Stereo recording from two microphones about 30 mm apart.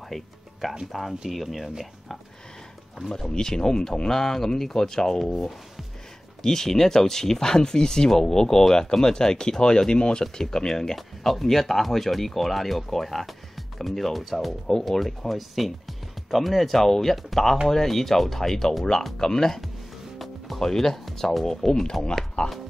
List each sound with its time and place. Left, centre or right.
0.1 s music: centre
1.3 s speech: centre
3.1 s speech: centre
6.4 s speech: centre
11.0 s speech: centre
14.7 s speech: centre
15.0 s speech: centre
20.2 s music: centre
20.6 s speech: centre
22.4 s speech: left